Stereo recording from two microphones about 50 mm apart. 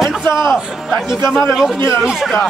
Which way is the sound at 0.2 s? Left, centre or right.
Left.